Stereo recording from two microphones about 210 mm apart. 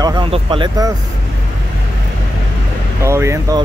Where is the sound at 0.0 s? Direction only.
20° right (ahead or behind).